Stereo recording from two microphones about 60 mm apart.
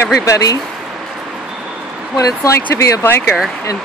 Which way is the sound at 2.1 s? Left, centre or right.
Left.